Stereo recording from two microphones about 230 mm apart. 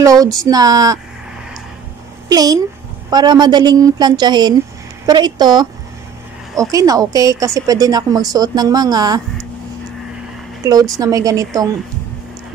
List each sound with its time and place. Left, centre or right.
0.0 s speech: centre
2.2 s speech: centre
10.6 s speech: centre